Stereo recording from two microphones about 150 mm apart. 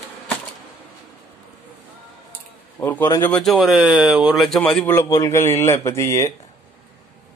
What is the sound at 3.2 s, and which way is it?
Speech, 5° left (ahead or behind).